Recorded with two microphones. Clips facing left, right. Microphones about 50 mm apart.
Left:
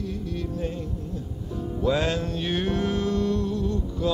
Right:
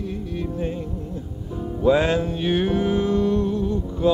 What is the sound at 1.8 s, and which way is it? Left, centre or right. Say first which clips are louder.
Music: right 6 dB; right.